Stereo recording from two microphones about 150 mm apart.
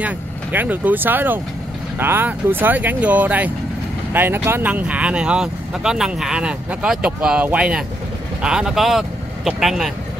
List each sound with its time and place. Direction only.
0.0 s speech: 10° right (ahead or behind)